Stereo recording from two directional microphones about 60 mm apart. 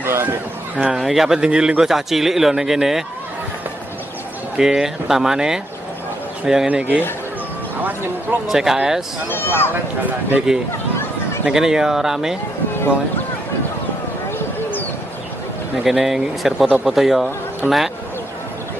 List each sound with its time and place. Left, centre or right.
0.0 s a sound: right
0.9 s a man's voice: centre
4.6 s speech: centre
6.7 s a man's voice: right
8.5 s speech: centre
9.3 s speech: left
10.5 s speech: centre
15.8 s a man's voice: centre